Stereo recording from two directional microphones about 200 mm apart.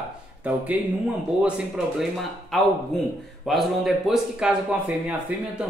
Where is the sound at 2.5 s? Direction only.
Centre (ahead or behind).